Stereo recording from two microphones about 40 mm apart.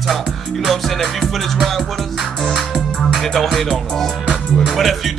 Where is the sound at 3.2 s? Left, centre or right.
Centre.